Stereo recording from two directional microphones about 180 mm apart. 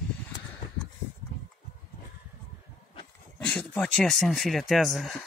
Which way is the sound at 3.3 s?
5° left (ahead or behind).